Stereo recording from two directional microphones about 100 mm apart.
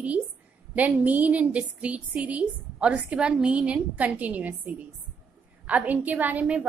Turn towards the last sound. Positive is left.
turn(degrees=-15)  # may be behind; listen again after turning